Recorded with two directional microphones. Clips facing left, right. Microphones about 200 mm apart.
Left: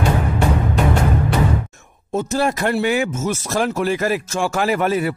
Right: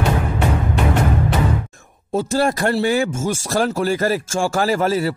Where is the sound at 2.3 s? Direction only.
35° right (ahead or behind).